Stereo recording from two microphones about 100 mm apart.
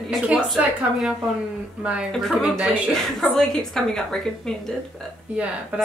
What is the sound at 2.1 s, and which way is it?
Speech, 5° left (ahead or behind).